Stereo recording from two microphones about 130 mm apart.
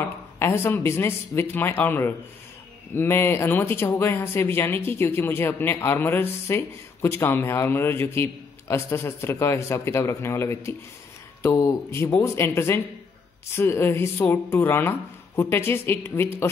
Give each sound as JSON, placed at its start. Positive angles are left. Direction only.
{"t": 0.0, "sound": "speech", "side_deg": 20}